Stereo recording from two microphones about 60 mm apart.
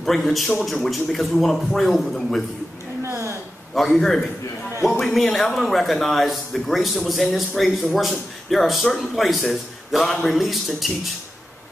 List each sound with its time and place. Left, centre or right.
0.0 s a man's voice: centre
3.0 s a sound: right
3.7 s a man's voice: centre